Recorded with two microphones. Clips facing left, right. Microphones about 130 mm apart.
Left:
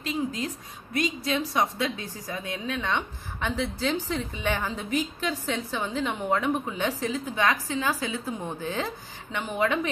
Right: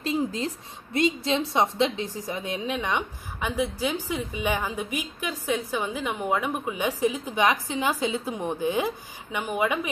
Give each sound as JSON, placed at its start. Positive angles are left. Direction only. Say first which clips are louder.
{"t": 0.0, "sound": "a woman's voice", "louder": "right 3 dB", "side_deg": -30}